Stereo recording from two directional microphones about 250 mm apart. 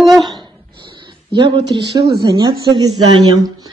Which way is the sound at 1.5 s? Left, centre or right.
Right.